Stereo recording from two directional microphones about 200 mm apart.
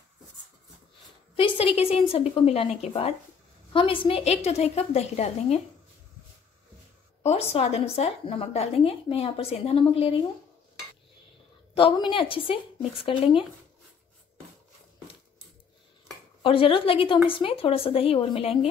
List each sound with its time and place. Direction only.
1.3 s a woman's voice: 25° left (ahead or behind)
7.2 s speech: 30° left (ahead or behind)
11.7 s speech: 25° left (ahead or behind)
16.4 s speech: 25° left (ahead or behind)